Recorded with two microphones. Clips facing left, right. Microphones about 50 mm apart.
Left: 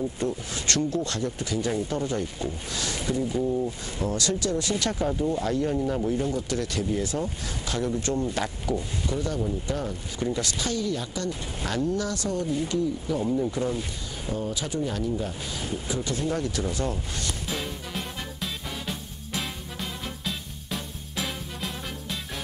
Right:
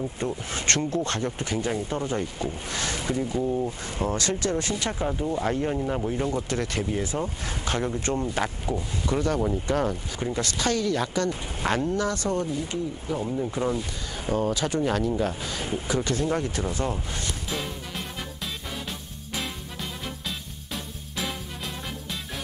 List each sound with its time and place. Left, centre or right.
0.2 s speech: right
1.7 s speech: right
2.3 s speech: right
7.0 s speech: right
7.4 s speech: right
9.0 s speech: right
10.7 s speech: right
11.6 s speech: right
13.2 s speech: centre
13.5 s speech: right
14.3 s speech: right
16.3 s speech: right
17.5 s music: centre